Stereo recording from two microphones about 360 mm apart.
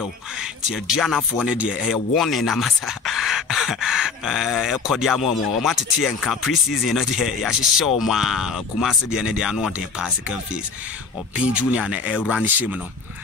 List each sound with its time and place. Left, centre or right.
0.0 s speech: centre